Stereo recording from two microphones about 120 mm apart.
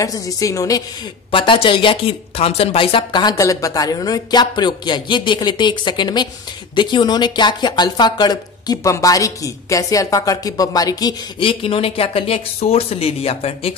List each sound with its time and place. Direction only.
0.0 s a woman's voice: 30° left (ahead or behind)
1.3 s speech: 45° left (ahead or behind)
11.3 s speech: 50° left (ahead or behind)